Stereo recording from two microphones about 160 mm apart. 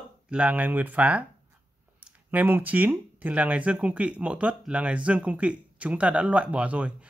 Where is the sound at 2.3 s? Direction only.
10° right (ahead or behind).